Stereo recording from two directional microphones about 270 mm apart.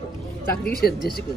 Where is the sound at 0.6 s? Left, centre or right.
Left.